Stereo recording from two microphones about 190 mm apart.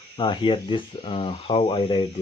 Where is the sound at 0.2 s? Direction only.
25° left (ahead or behind).